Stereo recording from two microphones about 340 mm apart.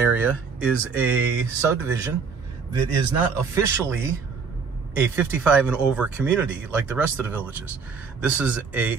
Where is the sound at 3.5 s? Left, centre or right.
Centre.